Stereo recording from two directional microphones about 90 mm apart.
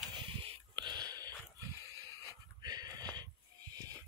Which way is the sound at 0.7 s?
55° right (ahead or behind).